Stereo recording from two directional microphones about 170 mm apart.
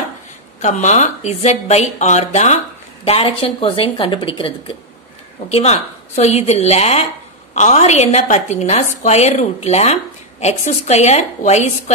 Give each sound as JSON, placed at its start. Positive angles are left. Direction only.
{"t": 0.6, "sound": "a woman's voice", "side_deg": 45}